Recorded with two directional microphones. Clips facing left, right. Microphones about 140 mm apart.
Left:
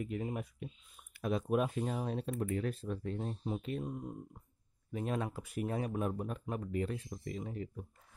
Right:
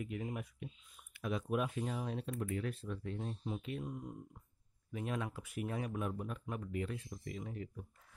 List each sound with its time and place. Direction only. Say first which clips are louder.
0.0 s speech: left 3 dB; 35° left (ahead or behind)